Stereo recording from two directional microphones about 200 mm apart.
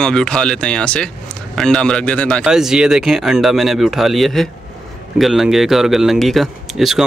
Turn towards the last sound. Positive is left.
turn(degrees=0)  # may be behind; listen again after turning